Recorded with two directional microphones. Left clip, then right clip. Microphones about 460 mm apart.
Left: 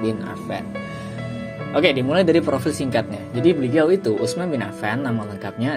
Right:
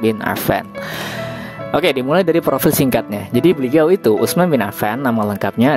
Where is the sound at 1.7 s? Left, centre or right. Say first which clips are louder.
Right 3 dB; right.